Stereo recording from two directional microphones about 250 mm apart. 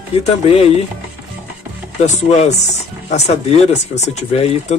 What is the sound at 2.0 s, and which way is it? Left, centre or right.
Speech, left.